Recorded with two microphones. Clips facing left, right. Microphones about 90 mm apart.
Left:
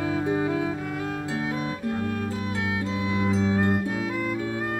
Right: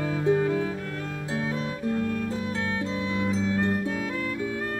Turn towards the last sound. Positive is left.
turn(degrees=15)  # may be behind; listen again after turning